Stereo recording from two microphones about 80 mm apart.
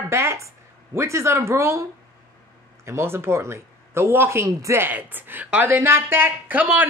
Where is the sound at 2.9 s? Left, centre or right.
Right.